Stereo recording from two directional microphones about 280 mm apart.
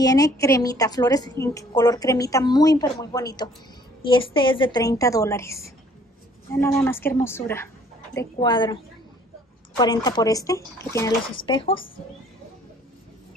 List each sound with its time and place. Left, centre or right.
0.0 s a woman's voice: centre
9.8 s a woman's voice: centre